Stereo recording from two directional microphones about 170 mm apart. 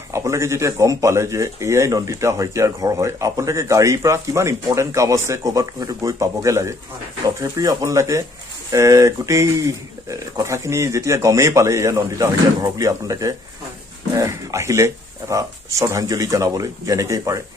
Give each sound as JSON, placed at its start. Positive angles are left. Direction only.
{"t": 0.1, "sound": "speech", "side_deg": -15}